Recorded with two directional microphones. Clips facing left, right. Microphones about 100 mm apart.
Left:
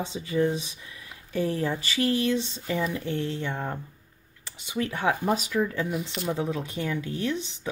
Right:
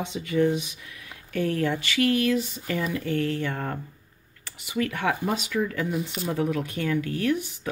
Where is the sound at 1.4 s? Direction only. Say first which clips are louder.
Right 3 dB; 30° left (ahead or behind); by 3.8 s 15° left (ahead or behind).